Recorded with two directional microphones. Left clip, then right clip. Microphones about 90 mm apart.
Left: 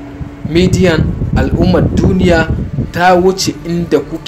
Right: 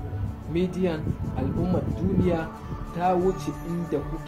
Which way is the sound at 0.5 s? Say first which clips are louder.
Left 16 dB; 25° right (ahead or behind).